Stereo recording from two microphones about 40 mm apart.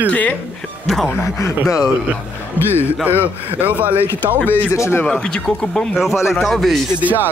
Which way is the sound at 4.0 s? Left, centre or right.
Left.